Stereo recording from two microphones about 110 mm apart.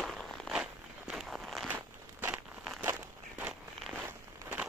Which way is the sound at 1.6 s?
15° right (ahead or behind).